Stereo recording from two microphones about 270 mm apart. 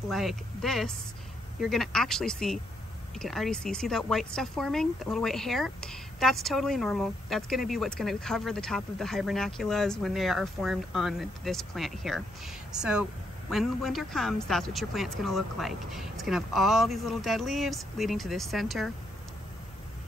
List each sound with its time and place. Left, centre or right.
0.1 s speech: centre